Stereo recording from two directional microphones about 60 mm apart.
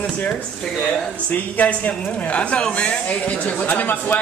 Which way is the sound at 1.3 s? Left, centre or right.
Left.